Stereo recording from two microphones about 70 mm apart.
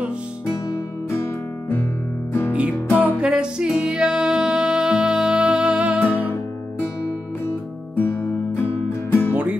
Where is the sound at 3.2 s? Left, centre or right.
Centre.